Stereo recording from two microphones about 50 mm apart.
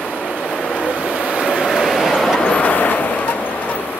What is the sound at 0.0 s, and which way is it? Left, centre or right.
Vehicle, centre.